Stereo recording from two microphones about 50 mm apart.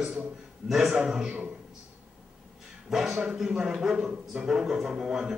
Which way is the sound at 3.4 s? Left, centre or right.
Centre.